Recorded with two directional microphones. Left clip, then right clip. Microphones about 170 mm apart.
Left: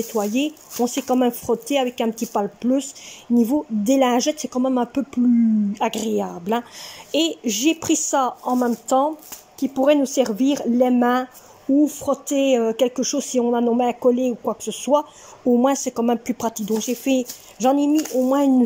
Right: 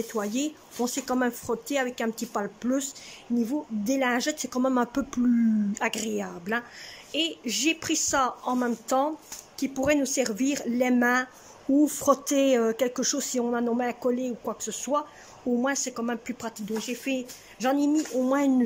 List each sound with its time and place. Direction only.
0.1 s speech: 10° left (ahead or behind)